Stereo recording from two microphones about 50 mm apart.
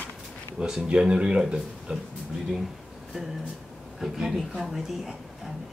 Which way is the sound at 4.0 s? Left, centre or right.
Centre.